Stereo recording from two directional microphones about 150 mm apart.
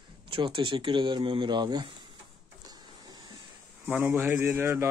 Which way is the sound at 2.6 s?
25° right (ahead or behind).